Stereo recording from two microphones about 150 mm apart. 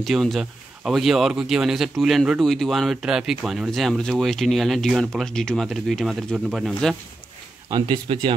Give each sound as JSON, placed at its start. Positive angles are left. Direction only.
{"t": 0.0, "sound": "speech", "side_deg": 0}
{"t": 7.7, "sound": "speech", "side_deg": -30}